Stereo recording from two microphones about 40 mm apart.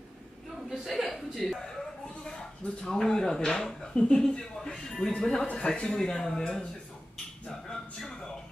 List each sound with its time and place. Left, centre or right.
0.7 s chuckle: centre
2.2 s speech: centre
7.7 s a sound: centre